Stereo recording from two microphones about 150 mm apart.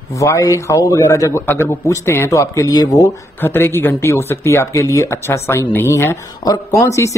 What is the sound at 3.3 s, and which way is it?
A man's voice, 15° left (ahead or behind).